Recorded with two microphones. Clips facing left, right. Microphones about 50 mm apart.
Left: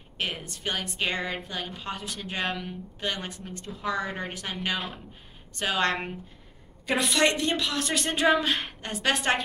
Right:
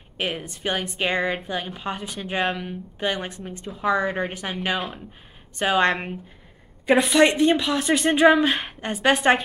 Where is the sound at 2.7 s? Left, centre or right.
Centre.